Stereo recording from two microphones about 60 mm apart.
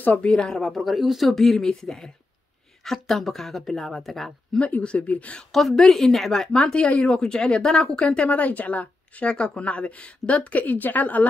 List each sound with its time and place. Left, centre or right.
0.0 s speech: left
0.3 s speech: centre
4.6 s speech: left
5.5 s speech: centre
8.3 s speech: left